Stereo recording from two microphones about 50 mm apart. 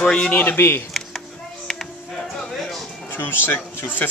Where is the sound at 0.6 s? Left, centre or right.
Left.